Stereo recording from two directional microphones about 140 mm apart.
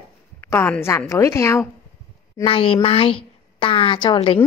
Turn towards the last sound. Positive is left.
turn(degrees=40)  # may be behind; listen again after turning